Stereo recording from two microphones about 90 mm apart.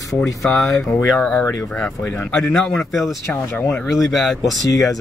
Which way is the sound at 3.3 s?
30° left (ahead or behind).